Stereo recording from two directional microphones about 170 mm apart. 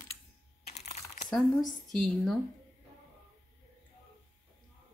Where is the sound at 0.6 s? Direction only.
40° left (ahead or behind).